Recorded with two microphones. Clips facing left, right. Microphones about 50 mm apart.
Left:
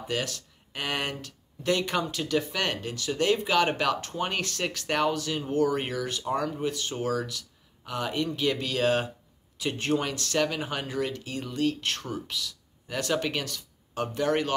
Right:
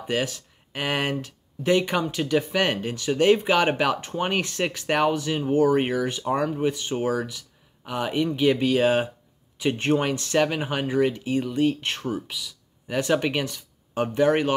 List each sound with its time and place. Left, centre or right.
0.0 s speech: right